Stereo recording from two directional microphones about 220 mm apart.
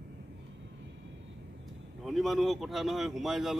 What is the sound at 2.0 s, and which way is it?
Speech, centre (ahead or behind).